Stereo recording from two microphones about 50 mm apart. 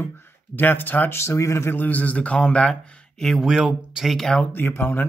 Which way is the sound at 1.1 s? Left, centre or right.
Left.